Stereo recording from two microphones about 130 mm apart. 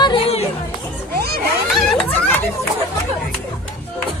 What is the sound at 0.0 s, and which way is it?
Children playing, 45° left (ahead or behind).